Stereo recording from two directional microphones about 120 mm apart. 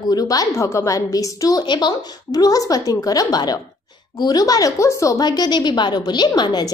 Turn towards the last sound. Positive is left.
turn(degrees=35)  # may be behind; listen again after turning